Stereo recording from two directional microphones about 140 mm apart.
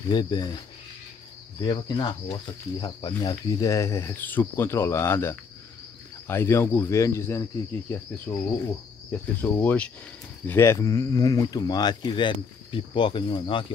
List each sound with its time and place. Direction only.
0.1 s speech: 30° left (ahead or behind)
1.6 s speech: 30° left (ahead or behind)
6.2 s cricket: 20° left (ahead or behind)
10.4 s speech: 15° left (ahead or behind); by 13.7 s 35° left (ahead or behind)